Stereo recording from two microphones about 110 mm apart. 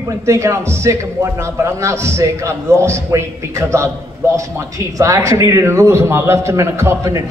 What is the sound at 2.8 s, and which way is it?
A man's voice, 25° right (ahead or behind).